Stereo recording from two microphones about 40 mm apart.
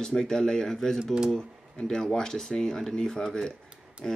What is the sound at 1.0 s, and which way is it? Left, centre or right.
Speech, centre.